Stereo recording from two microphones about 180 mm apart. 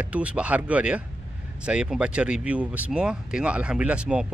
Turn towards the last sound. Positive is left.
turn(degrees=-5)  # may be behind; listen again after turning